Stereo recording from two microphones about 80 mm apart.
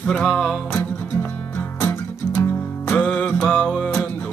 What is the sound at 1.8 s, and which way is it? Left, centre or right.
Music, left.